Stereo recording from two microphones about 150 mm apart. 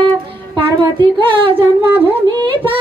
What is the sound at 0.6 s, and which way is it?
Speech, 30° right (ahead or behind).